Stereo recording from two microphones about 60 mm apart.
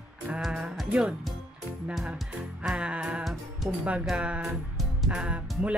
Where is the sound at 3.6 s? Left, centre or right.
Right.